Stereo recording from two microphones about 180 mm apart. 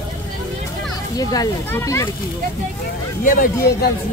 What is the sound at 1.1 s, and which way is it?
Speech, 20° left (ahead or behind).